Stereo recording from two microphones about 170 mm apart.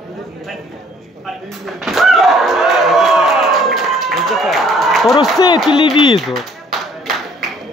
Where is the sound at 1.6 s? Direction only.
Centre (ahead or behind).